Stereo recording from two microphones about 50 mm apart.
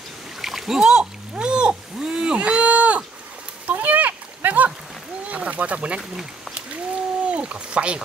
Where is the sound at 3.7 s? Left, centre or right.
Right.